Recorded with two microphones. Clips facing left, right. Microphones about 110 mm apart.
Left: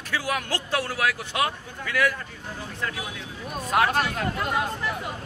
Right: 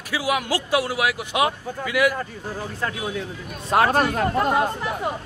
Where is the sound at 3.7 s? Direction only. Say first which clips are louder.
Right 4 dB; 40° right (ahead or behind).